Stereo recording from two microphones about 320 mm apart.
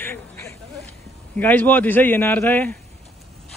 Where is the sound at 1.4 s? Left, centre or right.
Centre.